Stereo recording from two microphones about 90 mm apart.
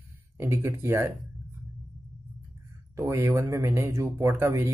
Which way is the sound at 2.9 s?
30° right (ahead or behind).